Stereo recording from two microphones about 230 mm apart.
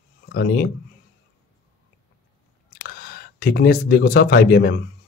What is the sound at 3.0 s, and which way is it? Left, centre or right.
Speech, left.